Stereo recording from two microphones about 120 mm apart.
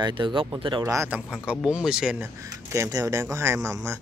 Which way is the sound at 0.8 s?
25° right (ahead or behind).